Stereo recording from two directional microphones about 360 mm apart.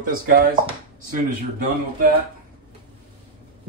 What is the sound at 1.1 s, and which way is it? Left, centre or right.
Speech, right.